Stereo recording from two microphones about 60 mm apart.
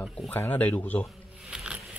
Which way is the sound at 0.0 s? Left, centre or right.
Left.